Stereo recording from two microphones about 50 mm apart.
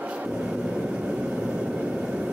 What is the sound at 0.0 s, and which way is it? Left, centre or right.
Vehicle, right.